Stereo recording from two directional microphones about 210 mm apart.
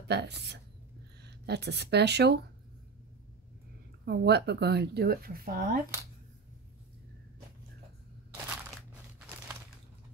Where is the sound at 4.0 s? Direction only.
50° right (ahead or behind).